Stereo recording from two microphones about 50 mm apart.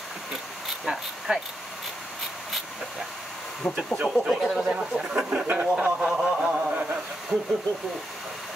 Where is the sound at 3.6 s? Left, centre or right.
Left.